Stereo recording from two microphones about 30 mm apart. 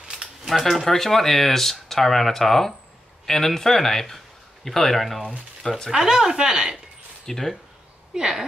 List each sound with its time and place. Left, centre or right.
0.5 s speech: centre
5.9 s speech: centre
7.2 s speech: centre
8.1 s speech: centre